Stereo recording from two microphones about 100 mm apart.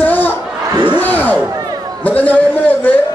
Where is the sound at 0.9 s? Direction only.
15° left (ahead or behind).